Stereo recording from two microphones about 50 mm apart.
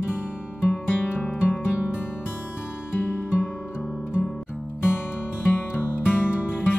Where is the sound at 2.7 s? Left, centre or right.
Left.